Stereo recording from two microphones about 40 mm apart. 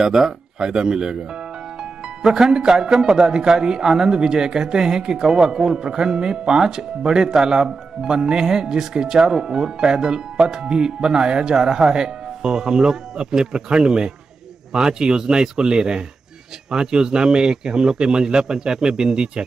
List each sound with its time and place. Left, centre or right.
0.6 s speech: right
2.2 s a man's voice: centre